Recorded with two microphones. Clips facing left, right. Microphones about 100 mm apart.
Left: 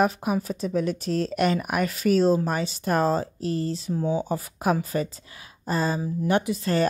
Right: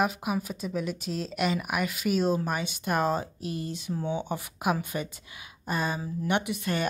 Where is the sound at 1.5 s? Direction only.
40° left (ahead or behind).